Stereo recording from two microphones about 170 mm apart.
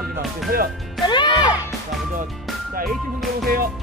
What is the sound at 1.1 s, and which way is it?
Speech, 25° left (ahead or behind).